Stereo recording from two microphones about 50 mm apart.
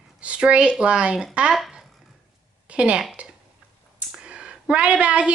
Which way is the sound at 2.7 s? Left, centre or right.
Right.